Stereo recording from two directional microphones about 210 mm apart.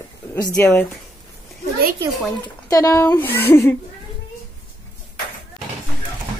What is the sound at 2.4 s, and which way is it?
Speech, 15° left (ahead or behind).